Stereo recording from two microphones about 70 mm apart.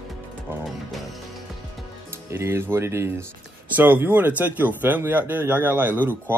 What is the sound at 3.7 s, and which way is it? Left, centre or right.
Speech, right.